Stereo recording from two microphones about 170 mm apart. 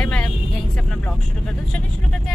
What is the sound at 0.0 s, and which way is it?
Vehicle, 5° left (ahead or behind).